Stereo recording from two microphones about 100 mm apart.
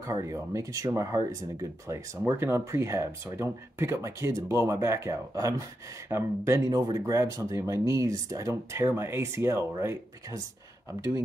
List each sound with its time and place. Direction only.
0.0 s speech: 30° right (ahead or behind)